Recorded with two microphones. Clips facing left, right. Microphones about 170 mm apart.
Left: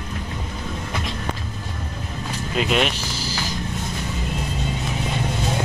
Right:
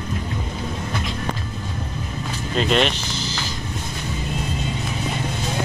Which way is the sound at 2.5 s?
5° left (ahead or behind).